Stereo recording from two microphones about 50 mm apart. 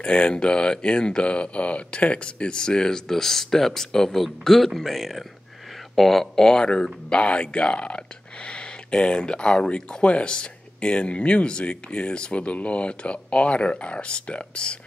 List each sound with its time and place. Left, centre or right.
0.0 s speech: left